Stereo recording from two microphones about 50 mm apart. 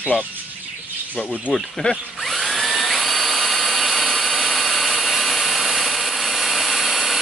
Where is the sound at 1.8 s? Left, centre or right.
Left.